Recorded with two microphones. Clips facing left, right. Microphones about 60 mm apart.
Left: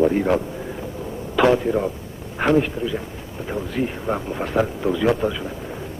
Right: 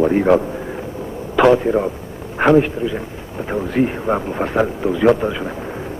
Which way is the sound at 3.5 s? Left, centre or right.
Right.